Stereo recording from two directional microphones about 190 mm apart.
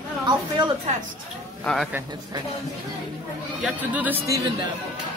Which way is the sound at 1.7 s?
5° left (ahead or behind).